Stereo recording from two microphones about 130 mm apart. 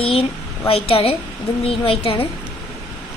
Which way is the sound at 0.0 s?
45° left (ahead or behind).